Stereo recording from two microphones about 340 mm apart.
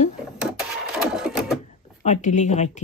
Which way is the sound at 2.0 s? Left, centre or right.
Left.